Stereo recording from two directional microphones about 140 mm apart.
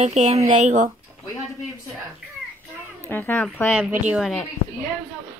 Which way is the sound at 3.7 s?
5° right (ahead or behind).